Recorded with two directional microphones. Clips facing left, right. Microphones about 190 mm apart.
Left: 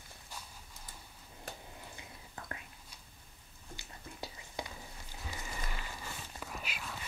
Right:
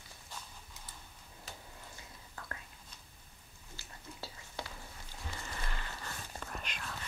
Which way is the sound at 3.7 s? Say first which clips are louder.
Left 1 dB; 15° left (ahead or behind).